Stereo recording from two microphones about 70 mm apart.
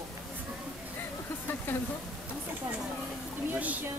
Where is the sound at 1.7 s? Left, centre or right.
Left.